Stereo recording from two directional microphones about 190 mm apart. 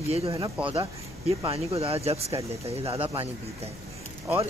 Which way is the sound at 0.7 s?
30° right (ahead or behind).